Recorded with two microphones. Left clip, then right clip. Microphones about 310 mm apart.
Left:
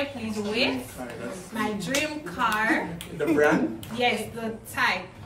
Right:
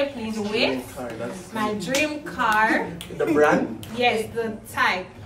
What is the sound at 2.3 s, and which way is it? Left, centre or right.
Speech, centre.